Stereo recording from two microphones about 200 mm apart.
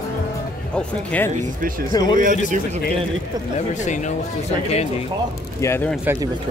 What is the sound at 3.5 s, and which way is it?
Speech, 35° left (ahead or behind).